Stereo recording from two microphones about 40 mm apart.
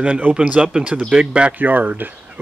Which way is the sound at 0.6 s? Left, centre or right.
Centre.